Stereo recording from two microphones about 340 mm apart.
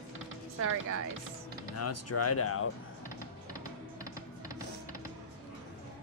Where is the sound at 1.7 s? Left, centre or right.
Left.